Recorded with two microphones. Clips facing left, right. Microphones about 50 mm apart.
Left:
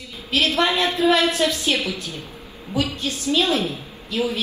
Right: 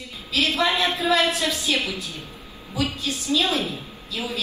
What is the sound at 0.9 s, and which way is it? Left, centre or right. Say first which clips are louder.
A woman's voice: left 3 dB; left.